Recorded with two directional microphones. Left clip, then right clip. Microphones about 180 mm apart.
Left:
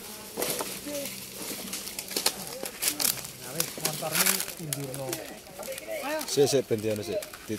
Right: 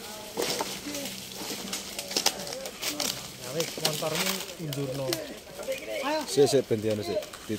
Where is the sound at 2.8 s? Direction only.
65° left (ahead or behind).